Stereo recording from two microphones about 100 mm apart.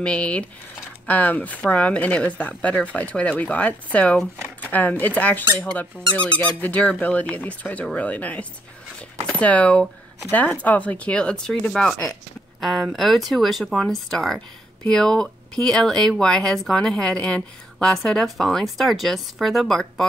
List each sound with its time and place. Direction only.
0.0 s speech: 10° left (ahead or behind)
6.6 s speech: 15° left (ahead or behind)